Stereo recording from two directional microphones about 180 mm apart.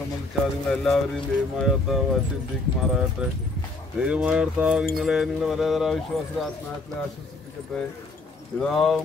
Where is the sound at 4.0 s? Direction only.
5° right (ahead or behind).